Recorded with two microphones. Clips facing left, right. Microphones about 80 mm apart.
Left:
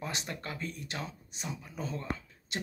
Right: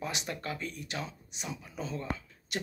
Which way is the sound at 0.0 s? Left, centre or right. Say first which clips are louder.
Right 2 dB; left.